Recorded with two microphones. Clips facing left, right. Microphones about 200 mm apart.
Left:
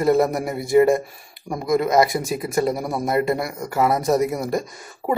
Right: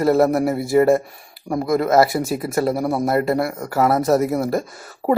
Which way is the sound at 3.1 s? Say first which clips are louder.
Right 2 dB; 20° left (ahead or behind).